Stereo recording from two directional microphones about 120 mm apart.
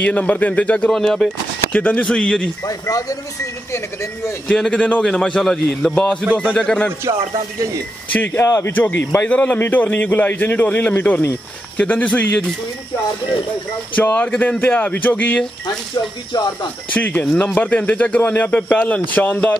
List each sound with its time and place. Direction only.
0.0 s a man's voice: 10° left (ahead or behind)
2.6 s speech: 30° left (ahead or behind)
4.5 s a man's voice: 5° left (ahead or behind)
8.1 s a man's voice: 15° left (ahead or behind)
8.5 s a man's voice: 25° left (ahead or behind)
13.9 s a man's voice: 10° left (ahead or behind)
16.9 s a man's voice: 10° left (ahead or behind)